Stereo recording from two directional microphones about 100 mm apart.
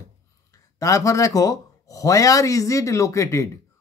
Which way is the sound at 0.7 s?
35° left (ahead or behind).